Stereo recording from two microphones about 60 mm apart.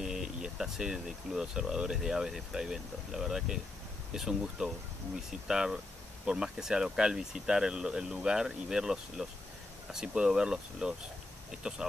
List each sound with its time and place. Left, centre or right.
0.0 s speech: centre